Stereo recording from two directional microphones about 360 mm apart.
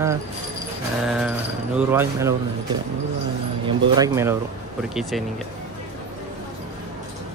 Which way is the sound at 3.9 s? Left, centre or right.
Centre.